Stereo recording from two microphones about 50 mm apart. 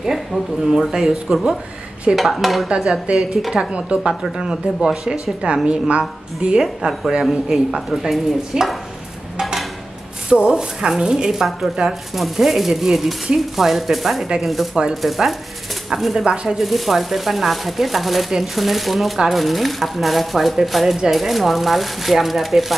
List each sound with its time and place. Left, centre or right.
0.0 s speech: centre
3.2 s speech: centre
3.7 s a woman's voice: right
4.1 s a woman's voice: centre
6.8 s speech: centre
9.4 s a sound: centre
10.3 s speech: centre
11.2 s speech: centre